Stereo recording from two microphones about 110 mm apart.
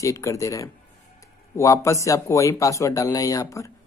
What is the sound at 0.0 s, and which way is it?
Speech, 30° left (ahead or behind).